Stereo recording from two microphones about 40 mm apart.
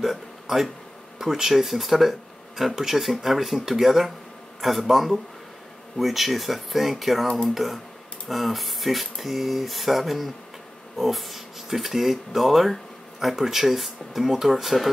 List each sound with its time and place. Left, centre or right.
0.0 s speech: centre